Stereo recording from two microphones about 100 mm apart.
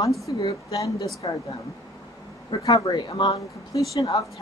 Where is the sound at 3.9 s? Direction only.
35° left (ahead or behind).